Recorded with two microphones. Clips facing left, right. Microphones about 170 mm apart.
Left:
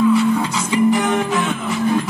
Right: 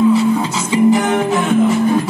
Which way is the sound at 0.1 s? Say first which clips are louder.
Right 2 dB; 25° right (ahead or behind).